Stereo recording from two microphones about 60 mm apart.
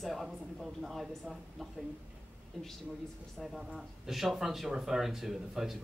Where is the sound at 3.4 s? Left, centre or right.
Centre.